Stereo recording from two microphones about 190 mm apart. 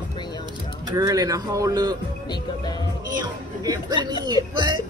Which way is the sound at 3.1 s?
20° right (ahead or behind).